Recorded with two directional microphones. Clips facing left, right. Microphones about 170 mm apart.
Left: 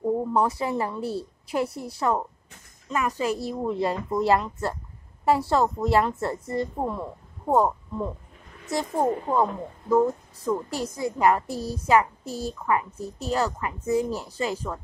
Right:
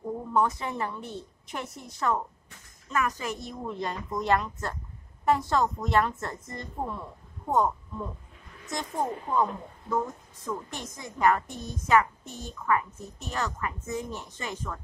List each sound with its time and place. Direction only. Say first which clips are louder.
0.3 s a woman's voice: left 3 dB; 30° left (ahead or behind)